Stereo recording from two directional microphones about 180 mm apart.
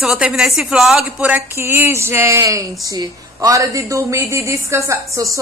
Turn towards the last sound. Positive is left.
turn(degrees=-20)  # may be behind; listen again after turning